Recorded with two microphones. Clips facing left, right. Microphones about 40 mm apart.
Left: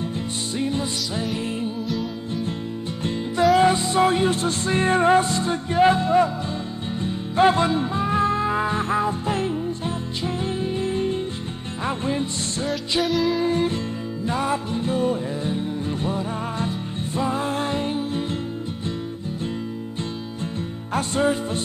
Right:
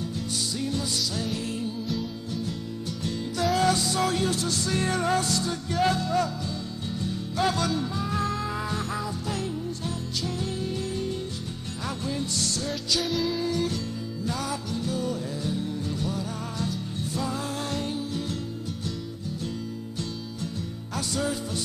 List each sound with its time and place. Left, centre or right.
0.6 s music: left
3.0 s music: left
13.0 s music: centre
13.4 s music: left
20.9 s music: left